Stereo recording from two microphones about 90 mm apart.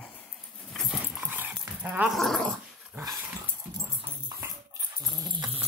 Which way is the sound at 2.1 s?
5° left (ahead or behind).